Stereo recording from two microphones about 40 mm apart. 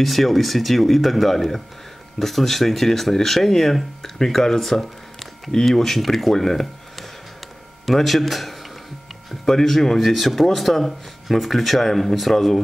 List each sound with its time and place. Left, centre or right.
0.0 s speech: centre